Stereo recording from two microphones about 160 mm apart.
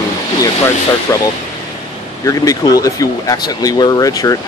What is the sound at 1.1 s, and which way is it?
Speech, 20° left (ahead or behind).